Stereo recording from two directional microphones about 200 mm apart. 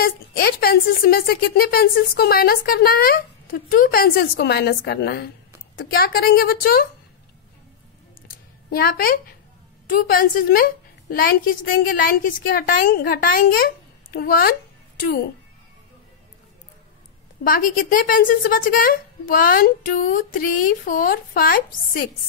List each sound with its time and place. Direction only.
0.0 s a woman's voice: 50° left (ahead or behind)
8.6 s a woman's voice: 50° left (ahead or behind)
17.4 s a woman's voice: 45° left (ahead or behind)